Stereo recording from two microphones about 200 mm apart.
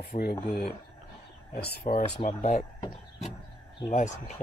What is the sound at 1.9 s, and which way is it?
Speech, 45° left (ahead or behind).